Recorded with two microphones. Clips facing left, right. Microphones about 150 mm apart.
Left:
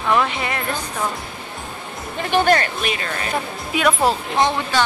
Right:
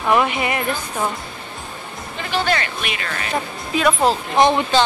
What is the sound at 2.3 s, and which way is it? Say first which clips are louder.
Speech: left 4 dB; 45° left (ahead or behind).